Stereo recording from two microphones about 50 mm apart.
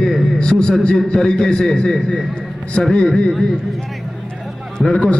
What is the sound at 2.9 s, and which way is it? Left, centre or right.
Speech, centre.